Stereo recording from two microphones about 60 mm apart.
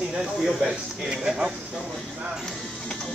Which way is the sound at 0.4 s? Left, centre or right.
Centre.